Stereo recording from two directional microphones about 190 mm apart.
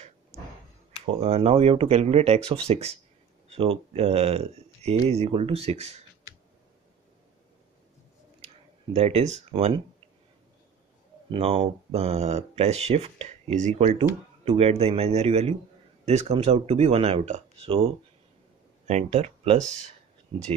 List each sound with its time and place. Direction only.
1.2 s speech: 30° right (ahead or behind)
8.9 s speech: 35° right (ahead or behind)
11.3 s speech: 30° right (ahead or behind)